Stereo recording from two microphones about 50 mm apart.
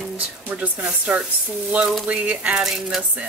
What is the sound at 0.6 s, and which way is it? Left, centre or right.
Speech, right.